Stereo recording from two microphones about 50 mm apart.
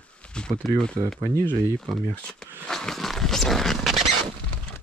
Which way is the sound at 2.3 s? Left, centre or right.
Centre.